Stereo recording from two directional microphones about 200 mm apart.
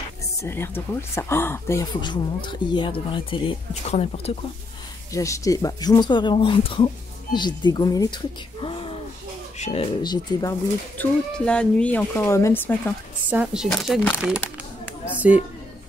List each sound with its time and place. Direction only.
0.4 s speech: 10° left (ahead or behind); by 4.3 s 30° left (ahead or behind)
5.1 s speech: 15° left (ahead or behind); by 9.8 s 35° left (ahead or behind)
10.0 s speech: 20° left (ahead or behind)
11.0 s speech: 5° left (ahead or behind)
13.3 s speech: 5° right (ahead or behind)
14.4 s a sound: 10° left (ahead or behind)